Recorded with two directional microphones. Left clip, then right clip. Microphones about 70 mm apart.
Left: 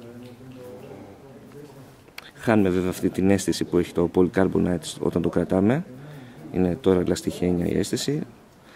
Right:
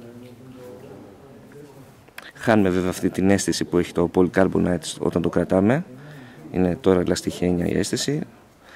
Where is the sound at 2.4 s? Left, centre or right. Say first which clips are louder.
Right 2 dB; right.